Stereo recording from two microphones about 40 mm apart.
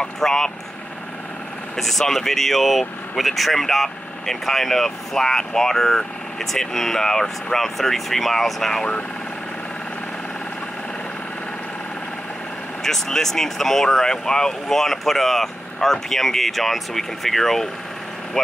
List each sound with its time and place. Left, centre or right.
0.0 s vehicle: centre
1.8 s speech: centre
12.8 s speech: centre